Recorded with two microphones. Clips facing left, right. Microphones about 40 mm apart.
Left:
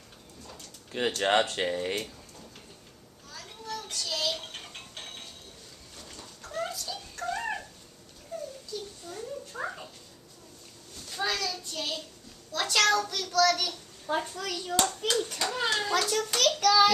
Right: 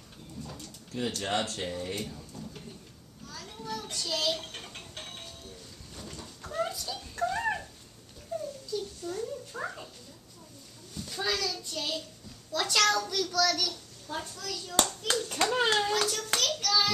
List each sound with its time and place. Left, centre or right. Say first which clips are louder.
0.4 s pigeon: right 5 dB; centre
0.9 s a child's voice: left 6 dB; left
3.3 s music: right 1 dB; centre
5.9 s chicken: right 3 dB; centre
6.5 s a sound: right 1 dB; centre
7.2 s dog: right 2 dB; centre
8.3 s a sound: right 3 dB; centre
11.0 s a child's voice: even; centre
14.0 s a child's voice: left 6 dB; left
15.0 s a child's voice: left 1 dB; right
15.5 s a child's voice: right 3 dB; right
16.0 s a child's voice: left 2 dB; left
16.5 s child singing: left 10 dB; left